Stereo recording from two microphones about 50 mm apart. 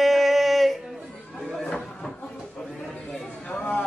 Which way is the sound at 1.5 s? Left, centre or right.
Centre.